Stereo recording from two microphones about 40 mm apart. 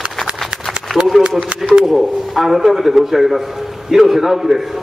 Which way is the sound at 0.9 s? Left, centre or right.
Left.